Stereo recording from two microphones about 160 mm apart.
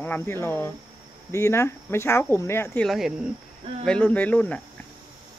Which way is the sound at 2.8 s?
Centre (ahead or behind).